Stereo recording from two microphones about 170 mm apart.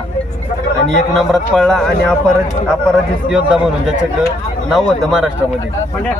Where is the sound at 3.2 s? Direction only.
5° right (ahead or behind).